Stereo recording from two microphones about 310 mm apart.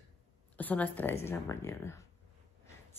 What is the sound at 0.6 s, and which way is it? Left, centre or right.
A woman's voice, centre.